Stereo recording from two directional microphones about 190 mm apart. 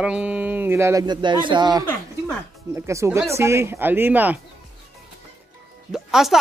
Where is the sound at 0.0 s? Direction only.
5° right (ahead or behind).